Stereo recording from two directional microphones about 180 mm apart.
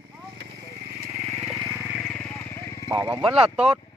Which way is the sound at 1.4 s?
Centre (ahead or behind).